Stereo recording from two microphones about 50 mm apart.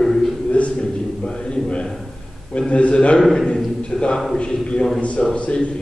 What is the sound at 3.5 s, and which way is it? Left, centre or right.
A man's voice, left.